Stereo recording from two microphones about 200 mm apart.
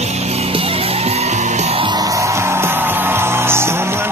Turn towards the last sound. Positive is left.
turn(degrees=-10)  # may be behind; listen again after turning